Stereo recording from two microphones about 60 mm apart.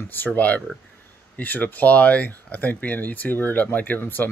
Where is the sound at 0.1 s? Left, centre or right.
Left.